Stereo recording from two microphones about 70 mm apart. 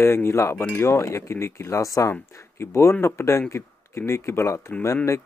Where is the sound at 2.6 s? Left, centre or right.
Left.